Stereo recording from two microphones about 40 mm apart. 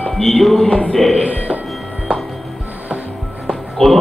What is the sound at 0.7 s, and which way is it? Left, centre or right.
Speech, left.